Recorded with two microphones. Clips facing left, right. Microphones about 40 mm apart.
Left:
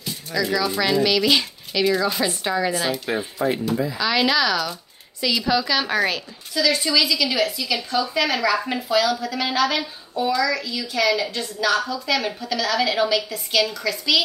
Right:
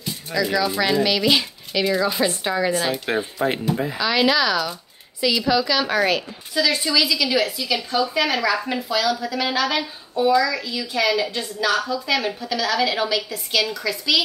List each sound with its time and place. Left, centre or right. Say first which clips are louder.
0.0 s a woman's voice: right 1 dB; centre
3.1 s speech: right 3 dB; right
4.0 s a woman's voice: right 1 dB; centre